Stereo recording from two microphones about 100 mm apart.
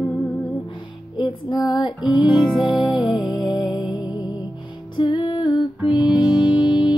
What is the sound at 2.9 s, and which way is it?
Music, 50° left (ahead or behind).